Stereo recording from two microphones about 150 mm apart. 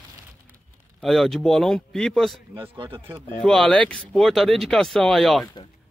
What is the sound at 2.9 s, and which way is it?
Speech, 15° right (ahead or behind).